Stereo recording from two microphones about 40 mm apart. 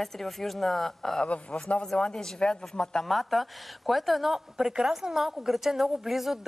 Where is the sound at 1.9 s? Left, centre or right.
Left.